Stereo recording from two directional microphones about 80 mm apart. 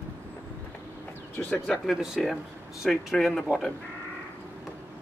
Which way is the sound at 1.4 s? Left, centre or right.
Left.